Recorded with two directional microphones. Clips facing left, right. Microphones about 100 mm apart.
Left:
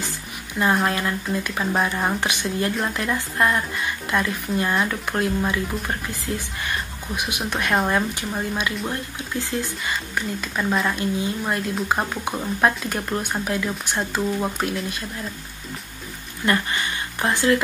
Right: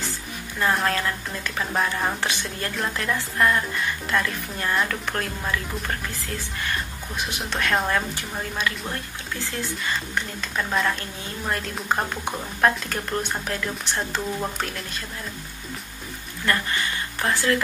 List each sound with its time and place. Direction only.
0.8 s a woman's voice: 15° left (ahead or behind)
16.4 s a woman's voice: 20° left (ahead or behind)